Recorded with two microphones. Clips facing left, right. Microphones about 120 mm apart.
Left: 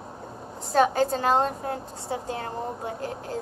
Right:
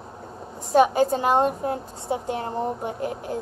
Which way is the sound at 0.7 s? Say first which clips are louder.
Right 3 dB; 15° right (ahead or behind).